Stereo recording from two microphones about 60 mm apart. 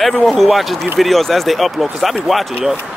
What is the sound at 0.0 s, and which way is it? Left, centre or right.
Speech, centre.